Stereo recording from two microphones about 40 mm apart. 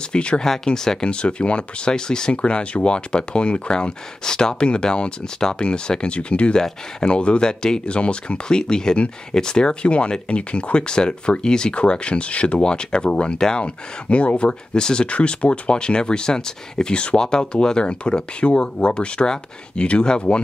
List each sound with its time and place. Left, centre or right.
0.1 s speech: left
0.4 s speech: centre; by 8.4 s left
8.5 s speech: centre
14.7 s speech: centre
15.0 s speech: left